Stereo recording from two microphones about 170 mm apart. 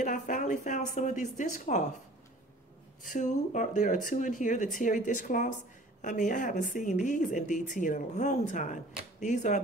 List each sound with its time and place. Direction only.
0.0 s a woman's voice: 45° left (ahead or behind)
3.0 s a woman's voice: 45° left (ahead or behind)